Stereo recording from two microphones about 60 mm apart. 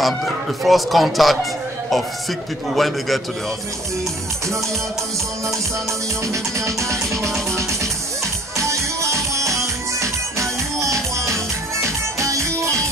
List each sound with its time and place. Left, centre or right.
0.0 s a man's voice: centre
6.2 s music: right
8.5 s music: right